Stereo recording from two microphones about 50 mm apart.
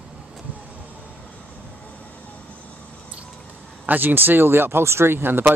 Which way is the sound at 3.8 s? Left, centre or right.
Right.